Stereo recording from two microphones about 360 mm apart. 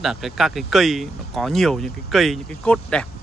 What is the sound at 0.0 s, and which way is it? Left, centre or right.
Speech, centre.